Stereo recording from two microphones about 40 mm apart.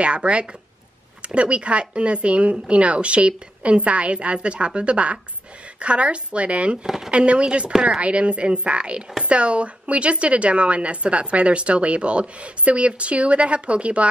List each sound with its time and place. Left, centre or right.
0.0 s a woman's voice: right